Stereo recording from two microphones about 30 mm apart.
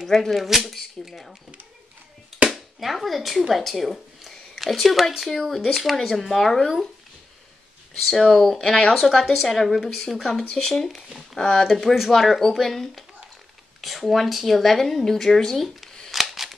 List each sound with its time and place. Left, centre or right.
0.1 s speech: centre
2.5 s a woman's voice: centre
4.3 s a sound: centre
5.3 s speech: centre
8.3 s speech: centre
9.5 s speech: centre
11.3 s speech: left
11.6 s speech: centre
16.1 s cap gun: centre